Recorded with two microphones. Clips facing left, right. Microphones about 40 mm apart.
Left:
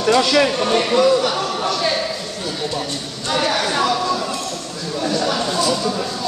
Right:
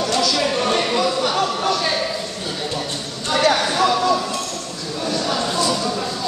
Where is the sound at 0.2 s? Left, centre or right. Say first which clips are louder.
Left 4 dB; left.